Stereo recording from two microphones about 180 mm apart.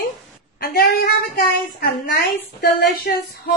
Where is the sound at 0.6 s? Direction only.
60° left (ahead or behind).